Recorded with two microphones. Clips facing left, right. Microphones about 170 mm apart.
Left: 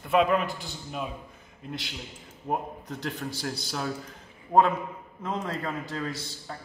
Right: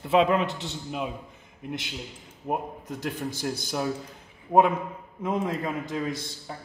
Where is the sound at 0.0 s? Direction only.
25° right (ahead or behind).